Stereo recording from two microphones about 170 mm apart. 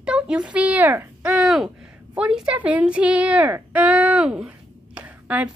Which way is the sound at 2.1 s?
5° right (ahead or behind).